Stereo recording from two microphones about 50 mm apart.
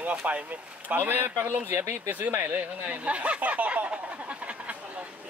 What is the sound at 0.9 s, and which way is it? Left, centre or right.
Speech, right.